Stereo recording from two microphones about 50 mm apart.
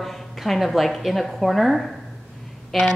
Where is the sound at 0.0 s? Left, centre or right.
Centre.